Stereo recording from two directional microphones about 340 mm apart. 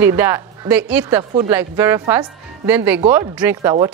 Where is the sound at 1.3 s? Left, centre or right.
Centre.